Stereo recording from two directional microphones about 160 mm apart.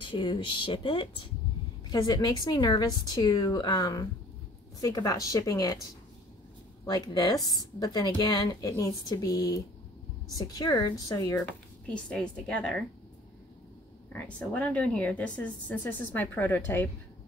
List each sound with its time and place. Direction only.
0.0 s a woman's voice: 30° left (ahead or behind)
6.9 s a woman's voice: 25° left (ahead or behind); by 12.8 s 5° left (ahead or behind)
14.1 s a woman's voice: 10° left (ahead or behind)